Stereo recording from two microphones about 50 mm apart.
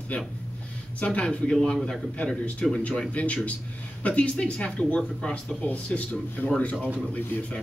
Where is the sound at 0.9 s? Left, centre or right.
Left.